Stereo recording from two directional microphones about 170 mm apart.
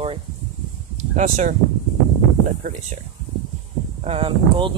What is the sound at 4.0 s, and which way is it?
Speech, 35° right (ahead or behind).